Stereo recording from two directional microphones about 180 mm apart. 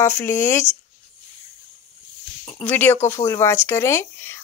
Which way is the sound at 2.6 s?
10° left (ahead or behind).